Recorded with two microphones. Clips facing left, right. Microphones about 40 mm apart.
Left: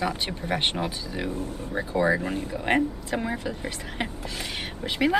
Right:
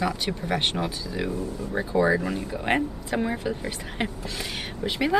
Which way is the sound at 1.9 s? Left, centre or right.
Centre.